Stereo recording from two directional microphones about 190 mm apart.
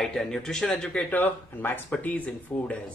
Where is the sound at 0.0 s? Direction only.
Centre (ahead or behind).